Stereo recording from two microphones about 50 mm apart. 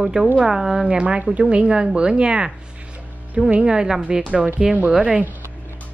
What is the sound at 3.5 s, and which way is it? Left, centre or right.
Speech, right.